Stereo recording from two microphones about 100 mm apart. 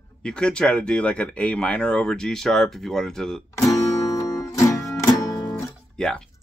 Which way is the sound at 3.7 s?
35° left (ahead or behind).